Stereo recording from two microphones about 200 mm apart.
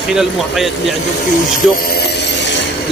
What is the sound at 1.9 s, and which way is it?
Ratchet, 55° left (ahead or behind).